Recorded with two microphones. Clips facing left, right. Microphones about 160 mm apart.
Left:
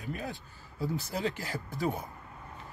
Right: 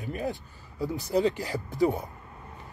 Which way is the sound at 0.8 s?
20° right (ahead or behind).